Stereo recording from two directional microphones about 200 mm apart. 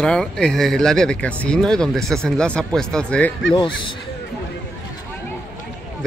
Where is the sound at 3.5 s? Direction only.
25° left (ahead or behind).